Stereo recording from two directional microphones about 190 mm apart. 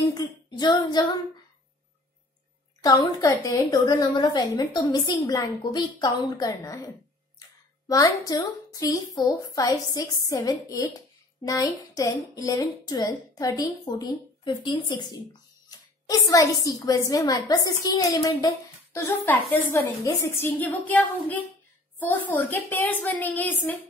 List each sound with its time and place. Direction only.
0.1 s a woman's voice: 20° left (ahead or behind)
2.8 s a woman's voice: 20° left (ahead or behind)
7.9 s a woman's voice: 20° left (ahead or behind)